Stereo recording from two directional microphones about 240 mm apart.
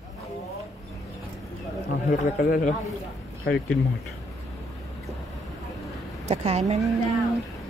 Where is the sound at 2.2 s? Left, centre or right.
Left.